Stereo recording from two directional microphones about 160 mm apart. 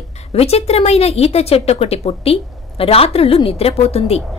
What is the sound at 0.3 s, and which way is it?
A woman's voice, 40° left (ahead or behind).